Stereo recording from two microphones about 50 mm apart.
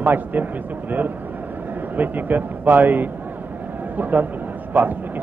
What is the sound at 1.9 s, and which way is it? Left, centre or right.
A man's voice, right.